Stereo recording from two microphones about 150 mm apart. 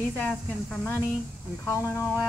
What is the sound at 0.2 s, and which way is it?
Speech, 10° left (ahead or behind).